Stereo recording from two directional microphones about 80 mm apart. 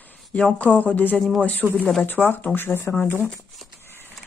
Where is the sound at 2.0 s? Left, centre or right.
Left.